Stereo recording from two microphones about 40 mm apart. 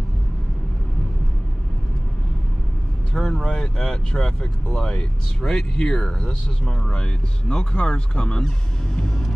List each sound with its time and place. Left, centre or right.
3.1 s speech: left